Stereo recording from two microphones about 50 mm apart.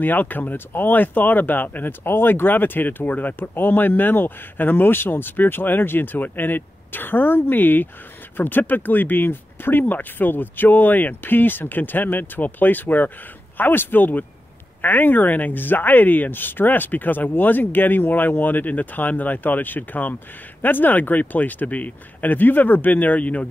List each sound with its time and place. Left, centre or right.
0.0 s speech: left
2.0 s speech: left